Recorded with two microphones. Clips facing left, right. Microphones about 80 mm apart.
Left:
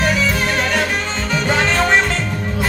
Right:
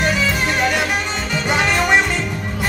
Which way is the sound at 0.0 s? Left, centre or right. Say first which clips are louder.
Left 1 dB; centre.